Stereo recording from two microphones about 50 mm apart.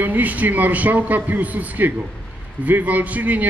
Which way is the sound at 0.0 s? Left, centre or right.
Right.